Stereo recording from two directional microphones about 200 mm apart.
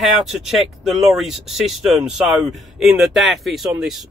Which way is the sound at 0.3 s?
Centre (ahead or behind).